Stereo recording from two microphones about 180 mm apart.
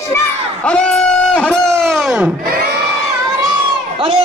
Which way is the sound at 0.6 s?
5° left (ahead or behind).